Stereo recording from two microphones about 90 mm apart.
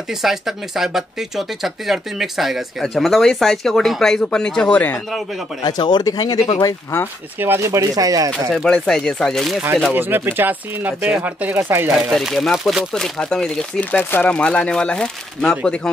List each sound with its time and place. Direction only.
0.2 s speech: 5° right (ahead or behind); by 5.0 s 20° left (ahead or behind)
5.6 s speech: 55° left (ahead or behind)
7.3 s speech: 25° right (ahead or behind); by 8.3 s 40° right (ahead or behind)
8.6 s speech: 5° left (ahead or behind)
9.9 s speech: 25° right (ahead or behind)
12.1 s speech: centre (ahead or behind)